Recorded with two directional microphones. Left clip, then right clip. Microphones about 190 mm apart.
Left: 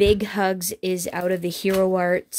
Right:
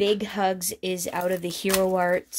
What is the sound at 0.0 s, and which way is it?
Speech, 30° left (ahead or behind).